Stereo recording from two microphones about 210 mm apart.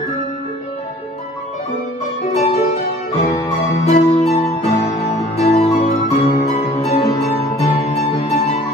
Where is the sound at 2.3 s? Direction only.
30° left (ahead or behind).